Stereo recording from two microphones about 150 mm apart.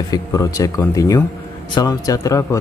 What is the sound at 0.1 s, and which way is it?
Speech, 25° left (ahead or behind).